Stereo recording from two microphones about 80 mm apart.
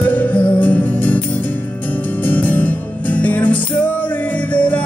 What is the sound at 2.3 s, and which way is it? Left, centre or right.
Music, left.